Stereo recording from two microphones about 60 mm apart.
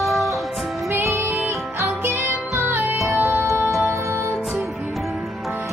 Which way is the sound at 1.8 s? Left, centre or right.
Right.